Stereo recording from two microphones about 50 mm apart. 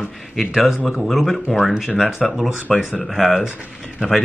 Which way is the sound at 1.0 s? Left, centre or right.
Centre.